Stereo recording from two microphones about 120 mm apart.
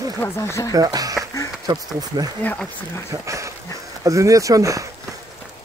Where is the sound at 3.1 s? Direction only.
25° right (ahead or behind).